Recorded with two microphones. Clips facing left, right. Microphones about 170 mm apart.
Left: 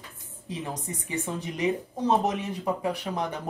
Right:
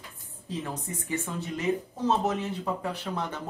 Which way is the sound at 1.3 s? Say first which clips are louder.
Left 2 dB; 15° left (ahead or behind).